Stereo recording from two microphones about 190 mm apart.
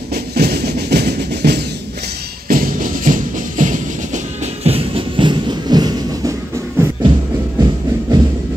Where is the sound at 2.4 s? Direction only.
45° right (ahead or behind); by 6.4 s 20° right (ahead or behind).